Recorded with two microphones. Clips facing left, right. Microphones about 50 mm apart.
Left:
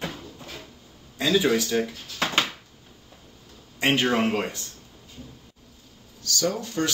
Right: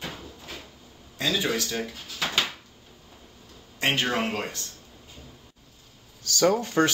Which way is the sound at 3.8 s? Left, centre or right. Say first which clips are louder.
Left 3 dB; centre.